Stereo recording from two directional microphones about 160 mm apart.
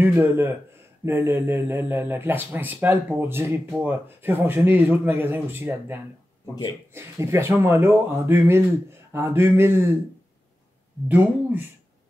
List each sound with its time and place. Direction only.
0.0 s speech: 15° right (ahead or behind)
11.1 s speech: 10° right (ahead or behind)